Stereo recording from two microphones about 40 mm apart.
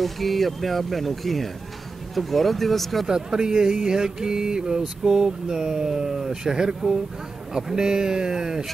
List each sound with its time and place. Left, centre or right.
0.0 s speech: centre
3.1 s speech: centre